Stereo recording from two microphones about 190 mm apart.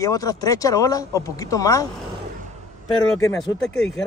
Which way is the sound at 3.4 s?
Centre (ahead or behind).